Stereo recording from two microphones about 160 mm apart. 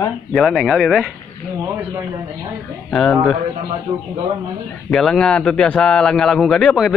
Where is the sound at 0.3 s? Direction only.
5° left (ahead or behind).